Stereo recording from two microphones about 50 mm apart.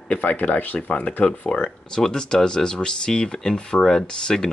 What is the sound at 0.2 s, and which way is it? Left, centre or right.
Speech, left.